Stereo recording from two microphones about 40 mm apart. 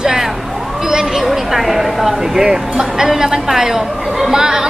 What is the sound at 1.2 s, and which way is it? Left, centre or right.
Speech, centre.